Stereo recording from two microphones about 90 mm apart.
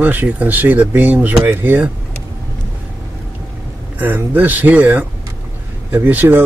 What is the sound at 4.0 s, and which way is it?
A man's voice, 20° right (ahead or behind).